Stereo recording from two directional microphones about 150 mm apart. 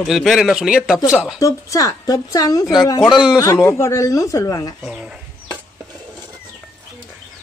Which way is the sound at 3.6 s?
20° left (ahead or behind).